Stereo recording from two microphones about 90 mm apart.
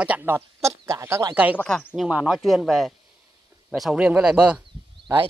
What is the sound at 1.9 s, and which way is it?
Speech, 10° right (ahead or behind).